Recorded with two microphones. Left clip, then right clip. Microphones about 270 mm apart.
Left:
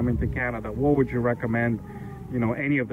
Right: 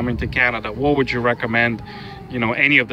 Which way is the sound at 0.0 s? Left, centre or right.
Centre.